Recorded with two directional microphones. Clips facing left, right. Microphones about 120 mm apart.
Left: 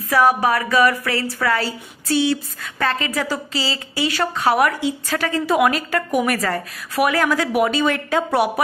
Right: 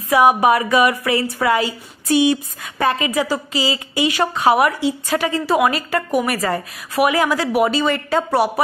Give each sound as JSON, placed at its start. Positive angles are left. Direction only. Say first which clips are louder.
{"t": 0.1, "sound": "a woman's voice", "louder": "right 3 dB", "side_deg": -15}